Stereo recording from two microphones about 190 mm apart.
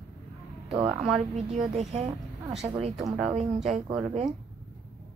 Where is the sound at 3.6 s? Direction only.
35° right (ahead or behind).